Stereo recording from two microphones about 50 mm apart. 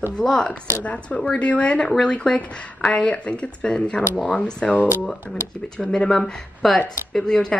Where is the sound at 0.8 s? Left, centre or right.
Left.